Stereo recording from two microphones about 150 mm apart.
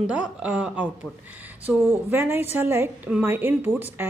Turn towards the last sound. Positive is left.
turn(degrees=-15)  # may be behind; listen again after turning